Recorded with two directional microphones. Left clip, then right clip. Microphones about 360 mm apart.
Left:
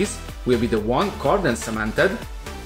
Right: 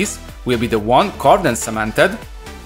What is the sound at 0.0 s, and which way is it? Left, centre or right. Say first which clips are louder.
Speech: right 3 dB; right.